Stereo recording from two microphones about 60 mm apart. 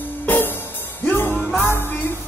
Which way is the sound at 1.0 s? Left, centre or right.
Left.